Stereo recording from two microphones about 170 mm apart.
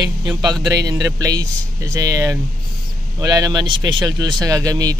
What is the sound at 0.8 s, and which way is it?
A man's voice, 20° right (ahead or behind).